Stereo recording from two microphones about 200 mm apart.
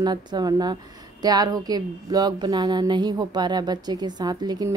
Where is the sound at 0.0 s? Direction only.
20° right (ahead or behind).